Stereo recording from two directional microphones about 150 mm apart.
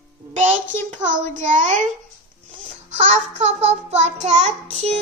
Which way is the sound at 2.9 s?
50° right (ahead or behind).